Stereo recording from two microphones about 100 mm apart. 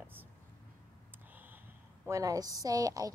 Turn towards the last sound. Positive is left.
turn(degrees=-35)  # may be behind; listen again after turning